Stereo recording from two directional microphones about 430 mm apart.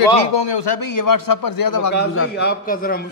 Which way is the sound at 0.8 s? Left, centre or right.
Left.